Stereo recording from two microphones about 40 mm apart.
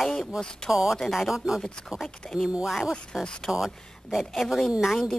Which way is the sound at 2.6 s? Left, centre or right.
Centre.